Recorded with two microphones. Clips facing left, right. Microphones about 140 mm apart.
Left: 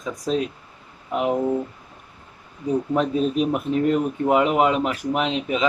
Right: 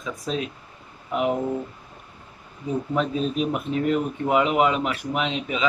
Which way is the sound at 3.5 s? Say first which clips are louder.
Left 3 dB; 30° left (ahead or behind).